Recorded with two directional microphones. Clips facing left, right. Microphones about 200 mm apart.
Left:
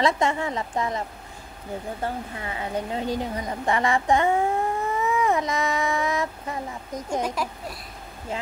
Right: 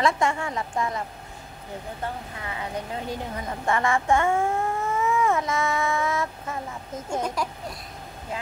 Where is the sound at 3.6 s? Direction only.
20° left (ahead or behind).